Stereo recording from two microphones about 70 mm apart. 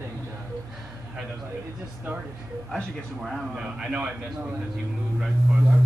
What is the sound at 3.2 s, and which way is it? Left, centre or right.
Speech, centre.